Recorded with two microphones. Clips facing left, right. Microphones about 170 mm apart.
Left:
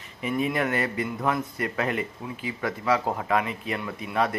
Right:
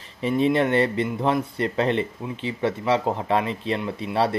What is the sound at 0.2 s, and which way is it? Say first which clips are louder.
Speech: right 6 dB; 30° right (ahead or behind).